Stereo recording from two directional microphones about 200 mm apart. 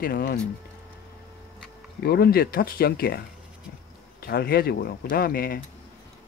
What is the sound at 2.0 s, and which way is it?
Speech, 50° left (ahead or behind).